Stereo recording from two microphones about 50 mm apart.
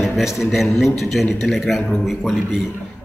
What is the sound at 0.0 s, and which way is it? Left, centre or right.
A man's voice, centre.